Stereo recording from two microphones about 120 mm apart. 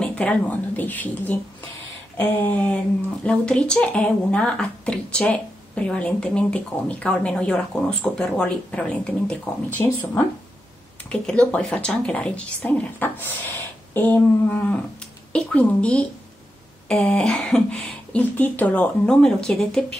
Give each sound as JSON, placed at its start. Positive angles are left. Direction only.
{"t": 0.0, "sound": "speech", "side_deg": 10}
{"t": 11.1, "sound": "speech", "side_deg": 10}